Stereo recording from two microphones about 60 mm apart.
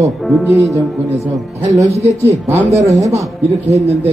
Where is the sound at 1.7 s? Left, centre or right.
Right.